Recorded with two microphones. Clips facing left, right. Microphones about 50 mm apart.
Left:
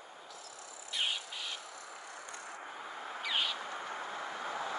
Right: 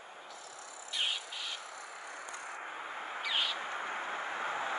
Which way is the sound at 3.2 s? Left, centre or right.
Centre.